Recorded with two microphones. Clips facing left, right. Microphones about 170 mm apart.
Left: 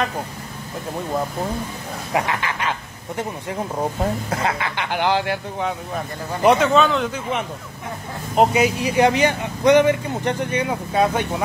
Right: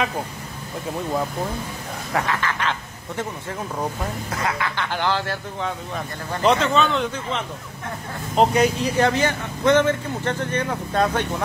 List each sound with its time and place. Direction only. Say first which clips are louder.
2.1 s speech: left 1 dB; 15° left (ahead or behind)
6.8 s speech: left 2 dB; centre (ahead or behind)
8.4 s speech: left 1 dB; 5° left (ahead or behind)